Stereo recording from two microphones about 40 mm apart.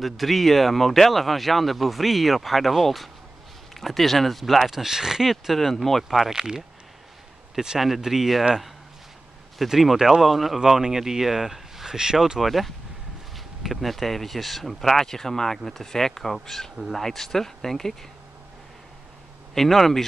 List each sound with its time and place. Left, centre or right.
0.0 s speech: centre
5.3 s speech: centre
6.3 s speech: centre
7.8 s speech: centre
9.7 s speech: centre
12.4 s speech: centre
19.5 s speech: centre